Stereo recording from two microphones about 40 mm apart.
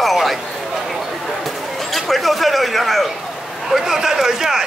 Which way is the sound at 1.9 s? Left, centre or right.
Centre.